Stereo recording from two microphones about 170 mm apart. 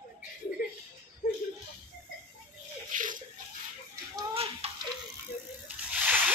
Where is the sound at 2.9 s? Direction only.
50° right (ahead or behind).